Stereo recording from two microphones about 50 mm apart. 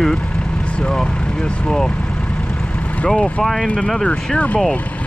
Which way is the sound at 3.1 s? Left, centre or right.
Left.